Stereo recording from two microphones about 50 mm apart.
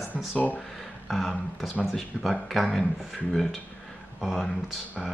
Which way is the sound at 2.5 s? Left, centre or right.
Centre.